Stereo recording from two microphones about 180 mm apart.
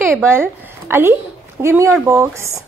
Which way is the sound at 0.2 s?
15° right (ahead or behind).